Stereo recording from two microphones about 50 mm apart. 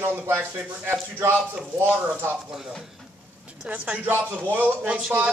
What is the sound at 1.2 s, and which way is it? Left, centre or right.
Speech, right.